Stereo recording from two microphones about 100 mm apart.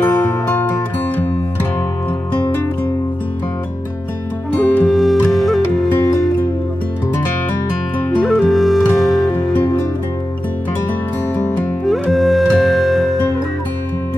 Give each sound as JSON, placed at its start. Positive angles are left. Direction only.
{"t": 0.5, "sound": "music", "side_deg": 20}
{"t": 4.5, "sound": "music", "side_deg": 15}
{"t": 4.8, "sound": "music", "side_deg": 0}
{"t": 8.2, "sound": "music", "side_deg": 0}
{"t": 11.9, "sound": "music", "side_deg": 0}